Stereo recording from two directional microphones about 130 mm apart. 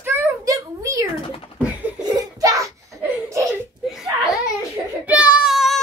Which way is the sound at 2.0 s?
30° right (ahead or behind).